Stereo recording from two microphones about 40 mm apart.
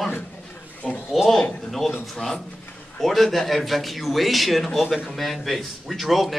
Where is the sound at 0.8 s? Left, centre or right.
Centre.